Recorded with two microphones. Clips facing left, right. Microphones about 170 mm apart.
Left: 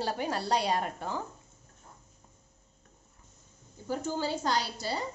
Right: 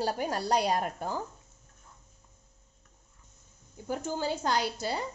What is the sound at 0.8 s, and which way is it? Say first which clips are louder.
Speech: right 1 dB; 5° right (ahead or behind).